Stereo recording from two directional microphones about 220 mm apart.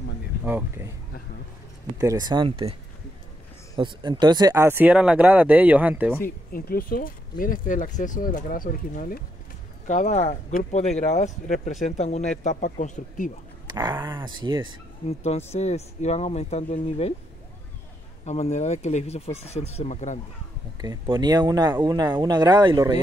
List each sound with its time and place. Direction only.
0.5 s speech: 10° right (ahead or behind)
2.0 s speech: 15° right (ahead or behind)
3.7 s speech: 20° right (ahead or behind)
6.2 s speech: 40° left (ahead or behind)
13.7 s speech: 20° right (ahead or behind)
15.0 s speech: 30° left (ahead or behind)
18.2 s speech: 30° left (ahead or behind)
20.8 s speech: 15° right (ahead or behind)